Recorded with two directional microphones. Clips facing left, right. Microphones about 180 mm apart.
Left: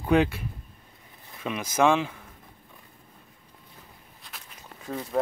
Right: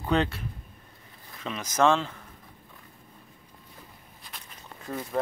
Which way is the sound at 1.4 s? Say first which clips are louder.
Left 1 dB; 10° left (ahead or behind).